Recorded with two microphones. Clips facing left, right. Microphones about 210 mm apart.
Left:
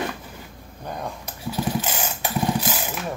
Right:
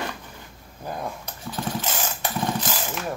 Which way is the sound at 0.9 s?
Centre (ahead or behind).